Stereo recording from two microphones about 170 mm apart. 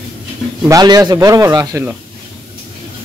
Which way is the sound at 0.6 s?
20° right (ahead or behind).